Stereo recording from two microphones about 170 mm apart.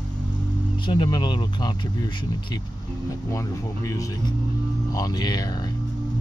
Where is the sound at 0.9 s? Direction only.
25° left (ahead or behind).